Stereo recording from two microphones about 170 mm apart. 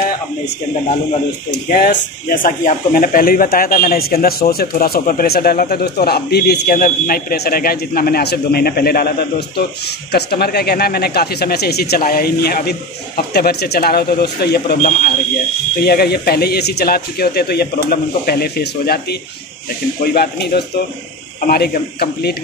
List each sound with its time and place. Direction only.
1.7 s speech: 60° left (ahead or behind)
20.2 s speech: 70° left (ahead or behind)
21.4 s speech: 60° left (ahead or behind)